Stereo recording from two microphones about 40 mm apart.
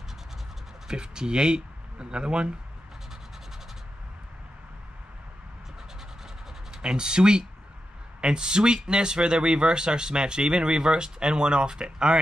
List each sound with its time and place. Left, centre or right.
0.8 s speech: centre
6.8 s speech: right